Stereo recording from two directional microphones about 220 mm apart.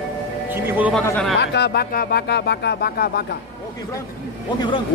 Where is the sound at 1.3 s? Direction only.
50° left (ahead or behind).